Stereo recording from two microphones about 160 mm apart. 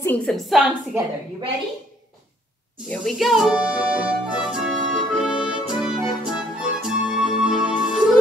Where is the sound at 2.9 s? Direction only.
Centre (ahead or behind).